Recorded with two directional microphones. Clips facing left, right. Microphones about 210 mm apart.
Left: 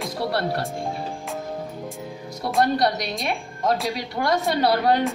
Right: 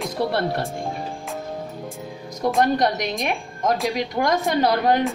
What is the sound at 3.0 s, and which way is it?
A woman's voice, 15° right (ahead or behind).